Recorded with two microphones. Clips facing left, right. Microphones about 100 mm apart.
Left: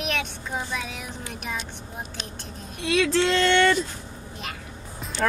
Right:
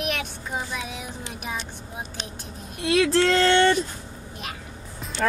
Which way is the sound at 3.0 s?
45° right (ahead or behind).